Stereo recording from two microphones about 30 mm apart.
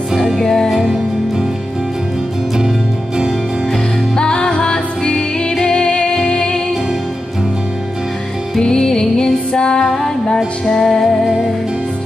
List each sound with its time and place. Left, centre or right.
0.1 s music: centre
0.4 s music: left
4.2 s music: left
5.1 s music: centre
8.5 s music: left
9.5 s music: left
9.8 s music: centre